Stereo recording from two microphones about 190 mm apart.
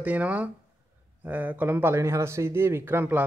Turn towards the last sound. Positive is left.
turn(degrees=-10)  # may be behind; listen again after turning